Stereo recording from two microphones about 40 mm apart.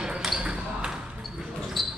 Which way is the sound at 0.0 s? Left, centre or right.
Centre.